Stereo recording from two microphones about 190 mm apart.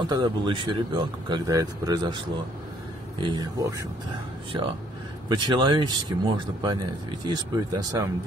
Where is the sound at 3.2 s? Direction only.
20° right (ahead or behind).